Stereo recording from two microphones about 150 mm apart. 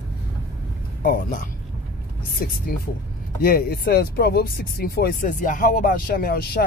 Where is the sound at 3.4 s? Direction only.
90° left.